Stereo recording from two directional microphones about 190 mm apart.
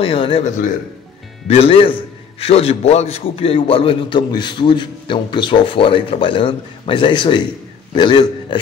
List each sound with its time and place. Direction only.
0.0 s a man's voice: 30° left (ahead or behind)